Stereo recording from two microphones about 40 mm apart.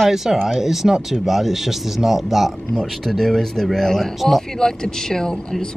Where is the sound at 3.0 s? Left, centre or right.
Centre.